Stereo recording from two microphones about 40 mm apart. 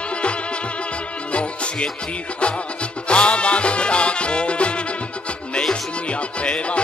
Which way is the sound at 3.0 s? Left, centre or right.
Left.